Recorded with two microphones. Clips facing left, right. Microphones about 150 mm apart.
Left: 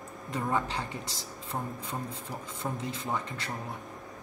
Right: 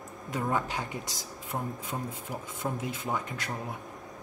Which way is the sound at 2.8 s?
5° right (ahead or behind).